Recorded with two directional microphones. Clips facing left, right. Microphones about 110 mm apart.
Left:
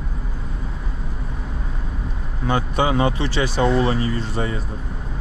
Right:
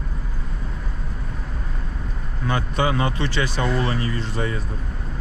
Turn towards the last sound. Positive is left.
turn(degrees=25)  # may be behind; listen again after turning